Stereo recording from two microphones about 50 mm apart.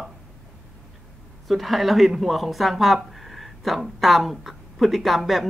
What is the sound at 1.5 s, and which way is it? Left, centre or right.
Speech, centre.